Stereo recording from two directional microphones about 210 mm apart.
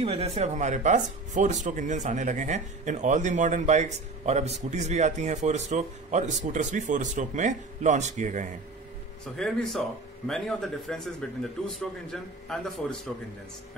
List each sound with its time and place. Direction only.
0.0 s speech: 30° right (ahead or behind)
9.2 s speech: centre (ahead or behind)